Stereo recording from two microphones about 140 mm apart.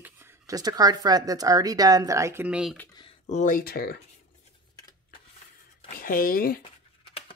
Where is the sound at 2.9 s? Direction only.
35° left (ahead or behind).